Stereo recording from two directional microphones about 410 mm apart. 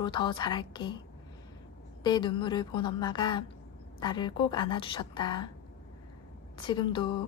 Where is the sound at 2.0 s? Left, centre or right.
Centre.